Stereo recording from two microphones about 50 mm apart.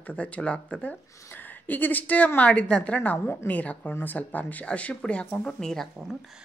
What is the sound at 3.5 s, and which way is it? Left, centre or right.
Speech, left.